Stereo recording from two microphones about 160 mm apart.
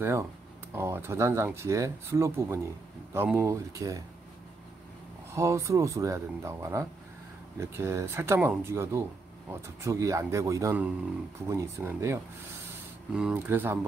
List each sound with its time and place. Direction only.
0.0 s speech: 15° right (ahead or behind)
5.3 s speech: 20° right (ahead or behind)
13.3 s speech: 15° right (ahead or behind)